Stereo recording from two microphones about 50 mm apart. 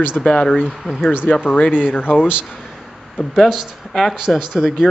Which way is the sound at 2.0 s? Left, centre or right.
Left.